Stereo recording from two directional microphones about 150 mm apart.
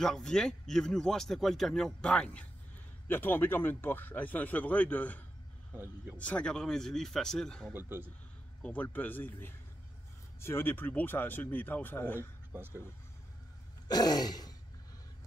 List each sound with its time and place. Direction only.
0.0 s a man's voice: 5° left (ahead or behind)
5.7 s a man's voice: 15° right (ahead or behind)
6.1 s speech: 10° left (ahead or behind)
7.7 s a man's voice: 15° right (ahead or behind)
8.6 s a man's voice: 10° left (ahead or behind)
12.5 s a man's voice: 15° right (ahead or behind)
13.8 s throat clearing: 25° left (ahead or behind)